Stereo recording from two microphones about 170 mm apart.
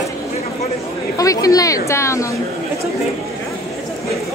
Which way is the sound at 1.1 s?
20° left (ahead or behind).